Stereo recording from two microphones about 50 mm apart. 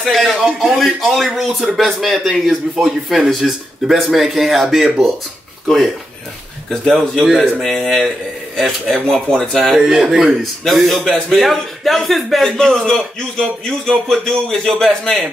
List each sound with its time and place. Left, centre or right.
0.1 s speech: centre
1.6 s speech: centre
6.7 s a man's voice: centre
7.2 s speech: centre
7.6 s speech: centre
9.1 s a man's voice: centre
9.8 s speech: centre
10.4 s a man's voice: centre